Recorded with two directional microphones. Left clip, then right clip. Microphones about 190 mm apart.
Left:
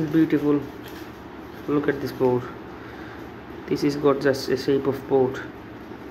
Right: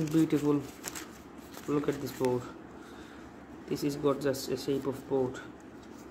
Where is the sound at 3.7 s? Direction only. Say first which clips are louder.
Left 9 dB; 15° right (ahead or behind).